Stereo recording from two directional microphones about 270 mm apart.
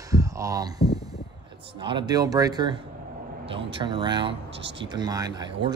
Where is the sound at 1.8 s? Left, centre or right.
Centre.